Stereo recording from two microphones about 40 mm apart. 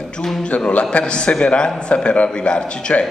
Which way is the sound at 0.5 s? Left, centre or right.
Left.